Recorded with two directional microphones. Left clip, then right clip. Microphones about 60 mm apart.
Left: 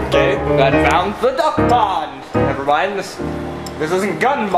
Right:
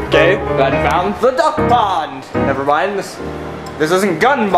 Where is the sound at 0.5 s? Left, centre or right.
Centre.